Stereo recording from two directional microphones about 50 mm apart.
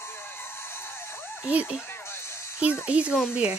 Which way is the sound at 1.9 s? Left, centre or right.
Left.